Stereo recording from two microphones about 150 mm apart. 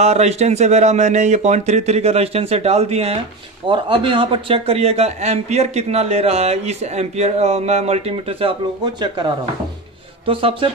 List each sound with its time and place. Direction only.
0.0 s speech: 45° right (ahead or behind)